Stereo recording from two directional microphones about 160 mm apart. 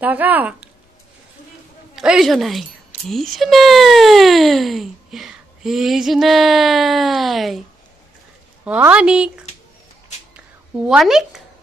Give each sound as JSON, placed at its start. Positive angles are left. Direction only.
{"t": 0.0, "sound": "a woman's voice", "side_deg": -10}
{"t": 2.0, "sound": "speech", "side_deg": -5}
{"t": 8.6, "sound": "a woman's voice", "side_deg": -10}
{"t": 10.9, "sound": "speech", "side_deg": 0}